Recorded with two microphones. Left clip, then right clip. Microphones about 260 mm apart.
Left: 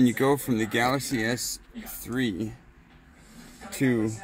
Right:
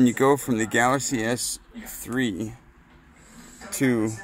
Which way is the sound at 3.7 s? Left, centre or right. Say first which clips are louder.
Right 2 dB; right.